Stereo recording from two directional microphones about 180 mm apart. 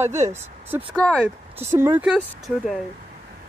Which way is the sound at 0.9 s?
5° left (ahead or behind).